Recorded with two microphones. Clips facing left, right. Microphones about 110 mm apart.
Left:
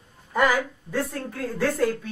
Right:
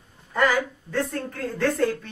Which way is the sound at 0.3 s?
10° left (ahead or behind).